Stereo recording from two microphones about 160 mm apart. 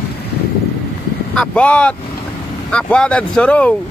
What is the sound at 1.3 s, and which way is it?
Speech, 5° left (ahead or behind).